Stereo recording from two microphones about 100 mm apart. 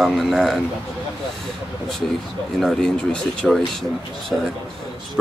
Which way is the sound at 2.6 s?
5° left (ahead or behind).